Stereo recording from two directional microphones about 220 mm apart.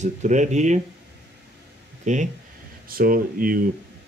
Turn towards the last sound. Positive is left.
turn(degrees=-40)  # may be behind; listen again after turning